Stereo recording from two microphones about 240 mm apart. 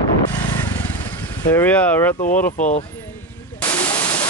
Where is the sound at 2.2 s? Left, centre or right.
Left.